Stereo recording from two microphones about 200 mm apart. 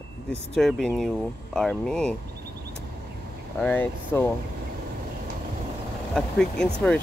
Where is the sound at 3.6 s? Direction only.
10° left (ahead or behind).